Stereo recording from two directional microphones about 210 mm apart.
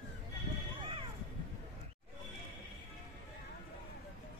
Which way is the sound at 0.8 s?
25° right (ahead or behind).